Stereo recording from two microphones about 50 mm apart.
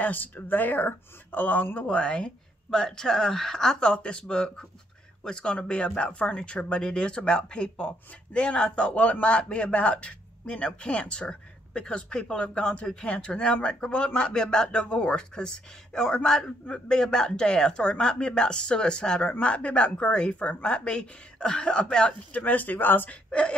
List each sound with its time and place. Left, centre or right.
0.0 s speech: left
1.9 s speech: left
22.3 s speech: left